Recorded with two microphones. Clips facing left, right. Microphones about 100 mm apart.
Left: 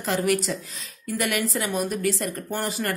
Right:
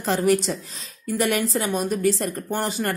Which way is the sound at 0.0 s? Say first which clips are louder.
Right 3 dB; 30° right (ahead or behind).